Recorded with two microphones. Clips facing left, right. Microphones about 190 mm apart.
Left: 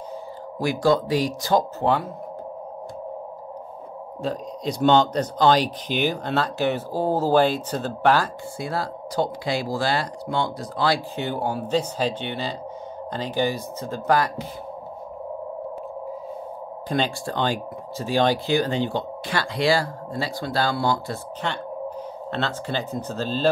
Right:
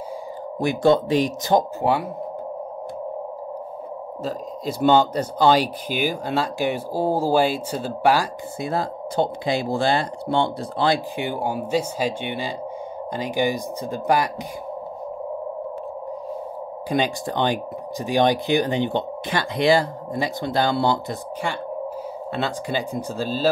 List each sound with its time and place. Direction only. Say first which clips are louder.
0.6 s speech: right 2 dB; 20° right (ahead or behind)
4.2 s speech: left 1 dB; 5° right (ahead or behind)
8.5 s speech: right 3 dB; 20° right (ahead or behind)
11.2 s speech: left 1 dB; 10° right (ahead or behind)
16.9 s speech: right 2 dB; 15° right (ahead or behind)
22.3 s speech: right 2 dB; 10° right (ahead or behind)